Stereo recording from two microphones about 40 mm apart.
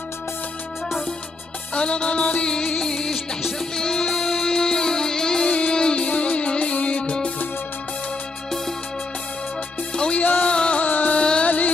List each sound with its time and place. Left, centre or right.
1.7 s music: left
10.1 s music: left
10.5 s music: left
10.8 s music: left
11.1 s music: left
11.4 s music: left